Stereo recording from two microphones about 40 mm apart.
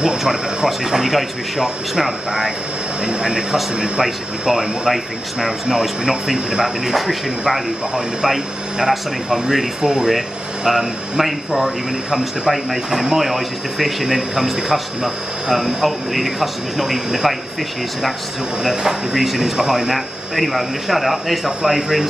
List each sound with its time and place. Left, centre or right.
0.7 s speech: centre
4.0 s speech: centre
8.7 s speech: centre
18.6 s speech: centre